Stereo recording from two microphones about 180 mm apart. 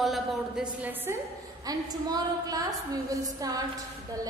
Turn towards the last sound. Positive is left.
turn(degrees=-20)  # may be behind; listen again after turning